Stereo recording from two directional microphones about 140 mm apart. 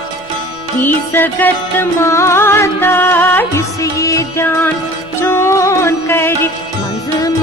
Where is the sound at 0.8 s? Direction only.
15° left (ahead or behind).